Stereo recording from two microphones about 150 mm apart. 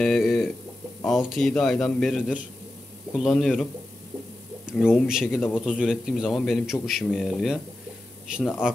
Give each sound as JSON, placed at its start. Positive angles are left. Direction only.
{"t": 0.0, "sound": "a man's voice", "side_deg": 5}
{"t": 4.7, "sound": "a man's voice", "side_deg": -5}